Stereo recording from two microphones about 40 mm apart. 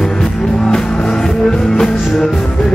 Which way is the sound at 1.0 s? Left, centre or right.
Centre.